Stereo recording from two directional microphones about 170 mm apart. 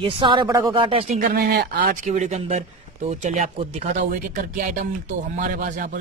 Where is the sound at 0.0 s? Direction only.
30° right (ahead or behind).